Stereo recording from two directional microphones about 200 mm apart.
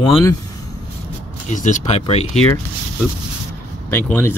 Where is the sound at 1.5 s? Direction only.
40° left (ahead or behind).